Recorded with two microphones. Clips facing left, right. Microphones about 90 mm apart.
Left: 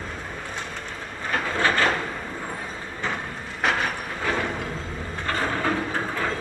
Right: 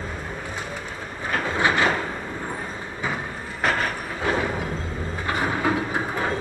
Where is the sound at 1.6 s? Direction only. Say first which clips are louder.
Right 1 dB; 15° right (ahead or behind).